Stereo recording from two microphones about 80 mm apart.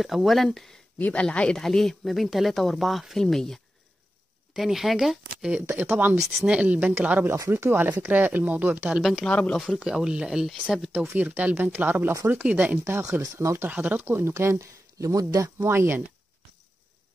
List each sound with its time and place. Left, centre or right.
0.0 s speech: centre
0.9 s speech: left; by 5.6 s centre
5.7 s speech: right
9.2 s speech: centre
9.8 s speech: centre
13.2 s speech: right
13.7 s speech: right
15.6 s speech: right